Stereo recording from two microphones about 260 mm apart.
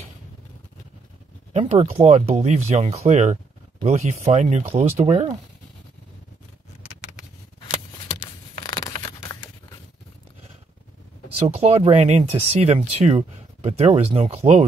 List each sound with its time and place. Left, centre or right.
1.5 s speech: right
8.6 s tearing: centre
11.4 s speech: right